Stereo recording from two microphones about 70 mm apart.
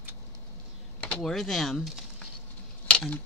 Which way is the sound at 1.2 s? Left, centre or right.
Centre.